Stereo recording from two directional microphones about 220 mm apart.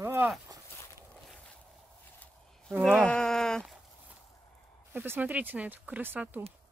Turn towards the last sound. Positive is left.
turn(degrees=-10)  # may be behind; listen again after turning